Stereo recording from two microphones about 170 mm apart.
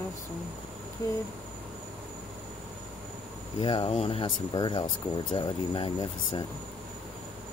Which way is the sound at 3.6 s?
30° left (ahead or behind).